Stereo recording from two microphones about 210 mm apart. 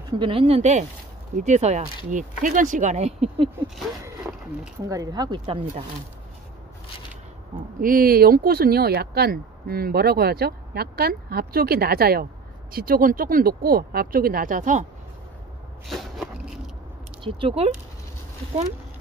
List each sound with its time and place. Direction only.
0.2 s speech: 25° right (ahead or behind)
4.0 s a sound: 10° right (ahead or behind)
4.8 s speech: 15° right (ahead or behind)
7.8 s speech: 45° right (ahead or behind)
15.9 s a sound: centre (ahead or behind)
17.2 s speech: 25° right (ahead or behind)